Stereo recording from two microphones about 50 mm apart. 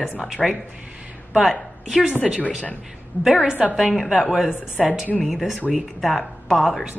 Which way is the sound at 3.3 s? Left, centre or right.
Centre.